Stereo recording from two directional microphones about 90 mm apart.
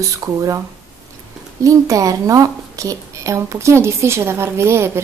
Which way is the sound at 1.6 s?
40° right (ahead or behind).